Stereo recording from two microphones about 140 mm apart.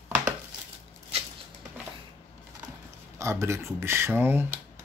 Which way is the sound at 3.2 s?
20° right (ahead or behind).